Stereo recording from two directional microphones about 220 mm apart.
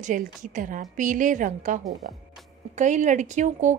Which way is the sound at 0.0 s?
35° right (ahead or behind).